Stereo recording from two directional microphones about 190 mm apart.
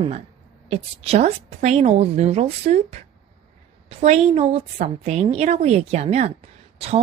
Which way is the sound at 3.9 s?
35° right (ahead or behind).